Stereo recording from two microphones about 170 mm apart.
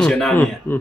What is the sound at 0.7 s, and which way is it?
Speech, 15° left (ahead or behind).